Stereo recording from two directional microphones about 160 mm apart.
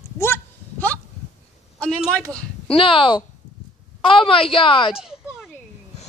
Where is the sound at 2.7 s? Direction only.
35° left (ahead or behind).